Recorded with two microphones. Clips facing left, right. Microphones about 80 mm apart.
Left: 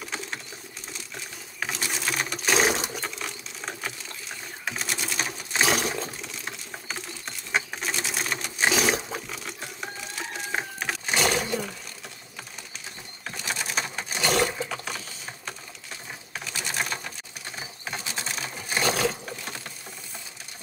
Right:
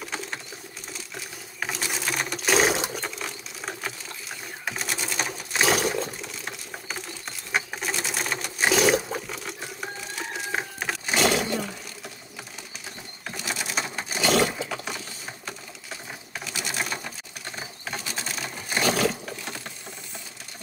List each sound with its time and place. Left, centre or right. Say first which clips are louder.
0.0 s typing: right 1 dB; centre
0.9 s sewing machine: right 1 dB; centre
2.9 s a sound: right 1 dB; centre
13.3 s a sound: even; centre
16.3 s sewing machine: even; centre
18.0 s sewing machine: even; centre